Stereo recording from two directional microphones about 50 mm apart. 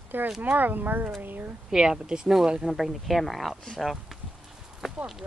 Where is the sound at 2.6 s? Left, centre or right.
Centre.